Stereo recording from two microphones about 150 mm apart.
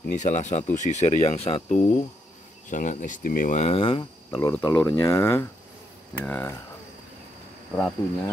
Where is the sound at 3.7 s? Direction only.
35° left (ahead or behind).